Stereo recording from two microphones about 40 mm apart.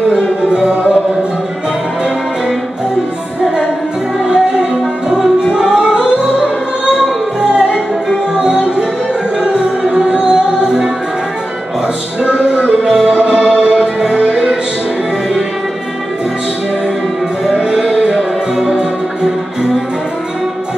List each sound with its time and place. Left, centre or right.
0.1 s music: right
4.2 s music: centre
7.5 s music: centre
12.2 s music: right
12.8 s music: centre
13.1 s music: right
17.7 s music: centre